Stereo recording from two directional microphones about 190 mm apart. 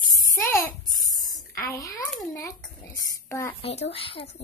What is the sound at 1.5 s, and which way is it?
A child's voice, 15° left (ahead or behind).